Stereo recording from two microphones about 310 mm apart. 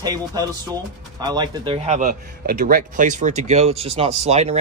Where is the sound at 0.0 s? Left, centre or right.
Centre.